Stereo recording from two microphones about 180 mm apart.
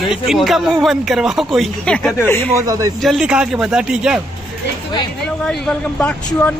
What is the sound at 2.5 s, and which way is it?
Speech, 20° right (ahead or behind).